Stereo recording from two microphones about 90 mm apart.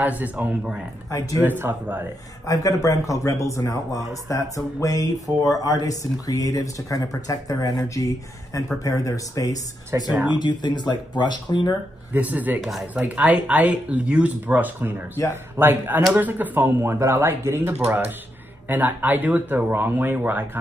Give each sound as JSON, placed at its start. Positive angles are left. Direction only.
{"t": 0.0, "sound": "speech", "side_deg": -20}
{"t": 2.4, "sound": "speech", "side_deg": 40}
{"t": 9.9, "sound": "speech", "side_deg": -35}
{"t": 10.3, "sound": "speech", "side_deg": 55}
{"t": 12.1, "sound": "speech", "side_deg": -20}
{"t": 12.5, "sound": "speech", "side_deg": 0}
{"t": 12.9, "sound": "speech", "side_deg": -15}